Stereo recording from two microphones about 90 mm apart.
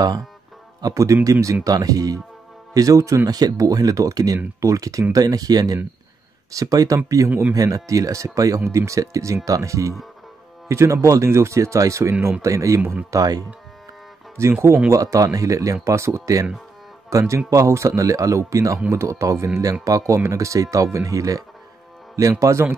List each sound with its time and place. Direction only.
0.7 s speech: 40° right (ahead or behind)
22.4 s speech: 35° right (ahead or behind)